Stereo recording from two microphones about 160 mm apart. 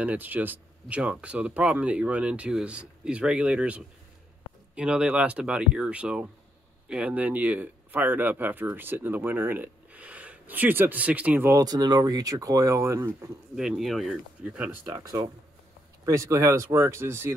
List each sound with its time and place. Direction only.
0.0 s speech: 10° right (ahead or behind)
13.6 s speech: centre (ahead or behind)
14.9 s speech: 25° right (ahead or behind)